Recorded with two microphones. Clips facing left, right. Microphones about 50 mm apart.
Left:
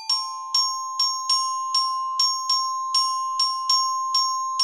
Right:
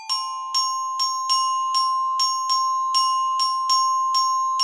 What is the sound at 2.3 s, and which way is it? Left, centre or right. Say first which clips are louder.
Glockenspiel: right 4 dB; right.